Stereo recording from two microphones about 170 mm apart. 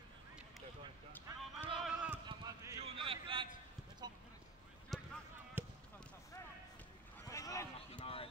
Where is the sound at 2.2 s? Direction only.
25° right (ahead or behind).